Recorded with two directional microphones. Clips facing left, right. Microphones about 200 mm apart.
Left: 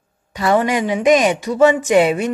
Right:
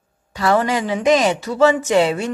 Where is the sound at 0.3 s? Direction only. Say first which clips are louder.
Left 1 dB; 20° left (ahead or behind).